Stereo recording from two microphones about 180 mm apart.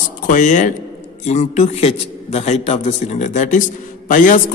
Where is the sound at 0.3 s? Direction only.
45° left (ahead or behind).